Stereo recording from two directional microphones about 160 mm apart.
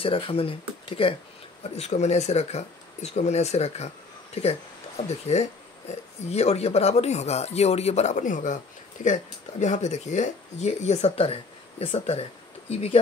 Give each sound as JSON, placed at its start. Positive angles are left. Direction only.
{"t": 0.0, "sound": "speech", "side_deg": 35}